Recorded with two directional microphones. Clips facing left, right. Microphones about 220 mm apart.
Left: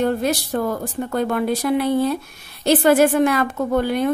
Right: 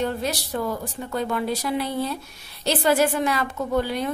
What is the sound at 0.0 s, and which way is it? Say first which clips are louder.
A woman's voice: left 6 dB; 50° left (ahead or behind).